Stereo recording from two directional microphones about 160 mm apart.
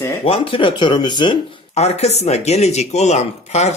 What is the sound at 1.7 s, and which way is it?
Speech, 40° left (ahead or behind).